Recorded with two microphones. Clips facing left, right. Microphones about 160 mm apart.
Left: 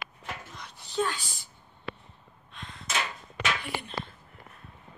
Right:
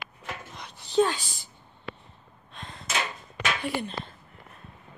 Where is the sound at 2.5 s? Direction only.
35° right (ahead or behind).